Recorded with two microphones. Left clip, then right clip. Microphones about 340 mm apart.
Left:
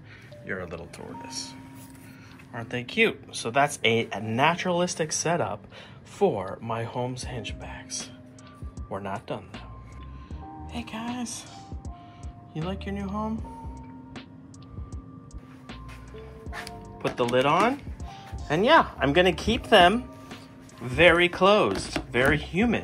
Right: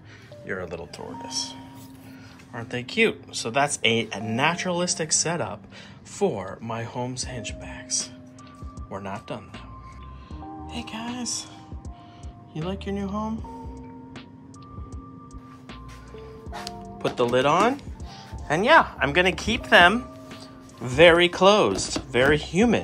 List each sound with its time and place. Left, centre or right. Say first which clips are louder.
0.5 s speech: right 2 dB; centre
10.7 s speech: even; centre
12.5 s speech: right 3 dB; centre
16.8 s speech: right 3 dB; centre